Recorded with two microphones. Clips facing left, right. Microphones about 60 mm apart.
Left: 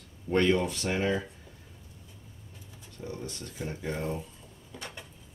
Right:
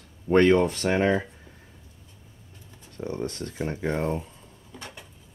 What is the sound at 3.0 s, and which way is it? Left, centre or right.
Speech, right.